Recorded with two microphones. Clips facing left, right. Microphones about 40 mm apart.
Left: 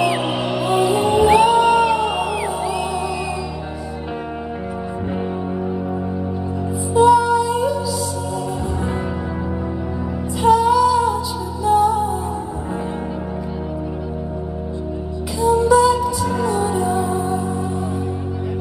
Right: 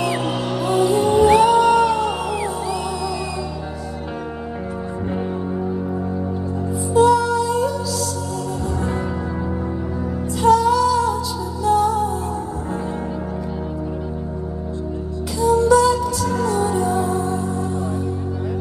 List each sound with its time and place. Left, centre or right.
0.7 s music: centre
6.9 s music: centre
10.4 s music: centre
15.4 s music: centre